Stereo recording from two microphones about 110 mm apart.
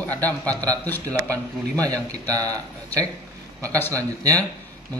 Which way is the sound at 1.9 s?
35° right (ahead or behind).